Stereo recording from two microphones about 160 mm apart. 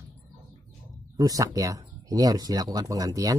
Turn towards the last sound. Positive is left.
turn(degrees=-20)  # may be behind; listen again after turning